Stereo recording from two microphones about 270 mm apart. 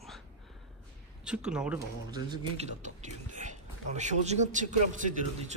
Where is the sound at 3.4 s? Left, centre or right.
Right.